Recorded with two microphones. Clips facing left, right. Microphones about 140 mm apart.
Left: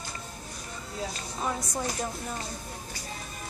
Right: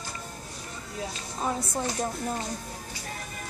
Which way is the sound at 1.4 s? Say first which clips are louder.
Right 2 dB; 25° right (ahead or behind).